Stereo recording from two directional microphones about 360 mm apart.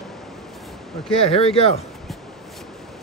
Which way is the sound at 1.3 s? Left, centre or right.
Centre.